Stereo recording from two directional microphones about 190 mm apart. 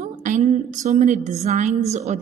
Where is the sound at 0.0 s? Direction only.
40° right (ahead or behind).